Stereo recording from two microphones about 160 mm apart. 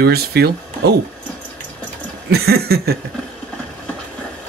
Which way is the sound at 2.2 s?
80° right.